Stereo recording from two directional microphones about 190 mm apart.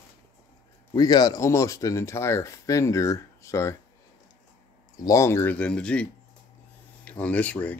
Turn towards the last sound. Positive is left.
turn(degrees=10)  # may be behind; listen again after turning